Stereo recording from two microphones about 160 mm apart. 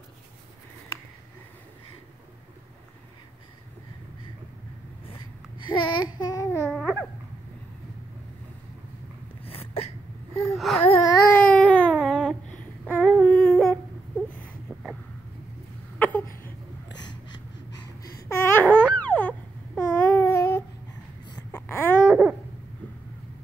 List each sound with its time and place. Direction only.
5.0 s babbling: 30° left (ahead or behind)
6.7 s babbling: centre (ahead or behind)
9.4 s a sound: 35° left (ahead or behind)
10.5 s whimper: centre (ahead or behind)
10.9 s baby cry: 25° left (ahead or behind)
11.4 s a sound: 10° left (ahead or behind)
16.0 s a sound: 10° left (ahead or behind)
18.1 s babbling: 15° left (ahead or behind)
21.5 s baby cry: 10° left (ahead or behind)